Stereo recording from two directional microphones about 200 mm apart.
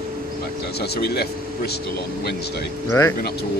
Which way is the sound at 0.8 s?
55° left (ahead or behind).